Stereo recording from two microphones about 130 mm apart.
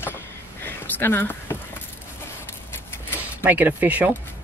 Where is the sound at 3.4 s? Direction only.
15° right (ahead or behind).